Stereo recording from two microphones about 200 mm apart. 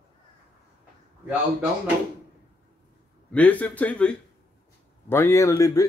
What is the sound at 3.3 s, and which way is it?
Speech, 5° left (ahead or behind).